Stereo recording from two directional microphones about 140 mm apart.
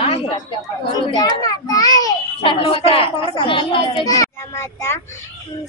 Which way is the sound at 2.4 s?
40° left (ahead or behind).